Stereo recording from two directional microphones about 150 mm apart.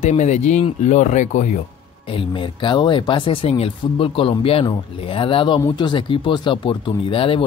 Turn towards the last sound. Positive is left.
turn(degrees=35)  # may be behind; listen again after turning